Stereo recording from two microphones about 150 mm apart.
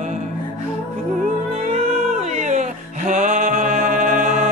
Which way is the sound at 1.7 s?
50° right (ahead or behind).